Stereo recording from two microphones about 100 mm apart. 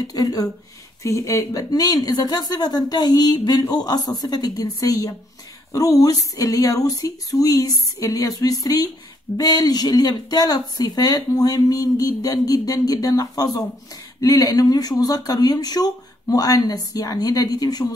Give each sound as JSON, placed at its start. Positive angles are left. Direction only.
{"t": 0.0, "sound": "speech", "side_deg": 35}